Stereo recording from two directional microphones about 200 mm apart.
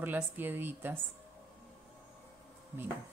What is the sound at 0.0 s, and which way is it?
Speech, 10° right (ahead or behind).